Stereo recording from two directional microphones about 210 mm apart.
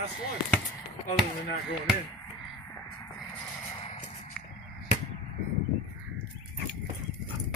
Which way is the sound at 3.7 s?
30° left (ahead or behind).